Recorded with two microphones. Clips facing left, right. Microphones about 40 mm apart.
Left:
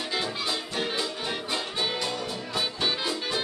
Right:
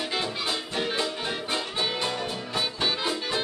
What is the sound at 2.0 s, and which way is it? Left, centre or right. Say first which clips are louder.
Music: right 2 dB; right.